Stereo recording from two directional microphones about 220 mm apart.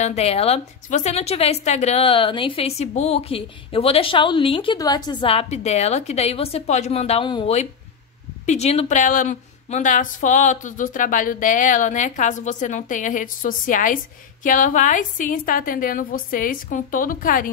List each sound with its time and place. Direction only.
0.0 s a woman's voice: 30° left (ahead or behind)